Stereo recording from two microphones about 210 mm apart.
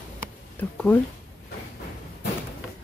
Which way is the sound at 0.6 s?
10° left (ahead or behind).